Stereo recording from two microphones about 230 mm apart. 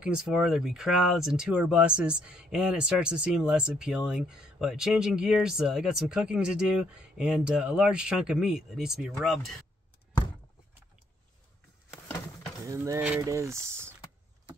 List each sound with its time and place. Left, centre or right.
0.0 s speech: centre
12.6 s speech: centre